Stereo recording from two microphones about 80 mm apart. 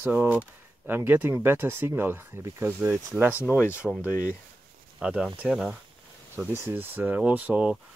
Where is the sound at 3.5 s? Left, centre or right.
Left.